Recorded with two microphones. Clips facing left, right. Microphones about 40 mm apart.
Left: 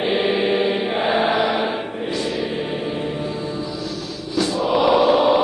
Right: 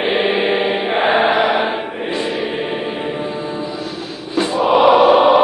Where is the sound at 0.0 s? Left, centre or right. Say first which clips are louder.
Right 3 dB; right.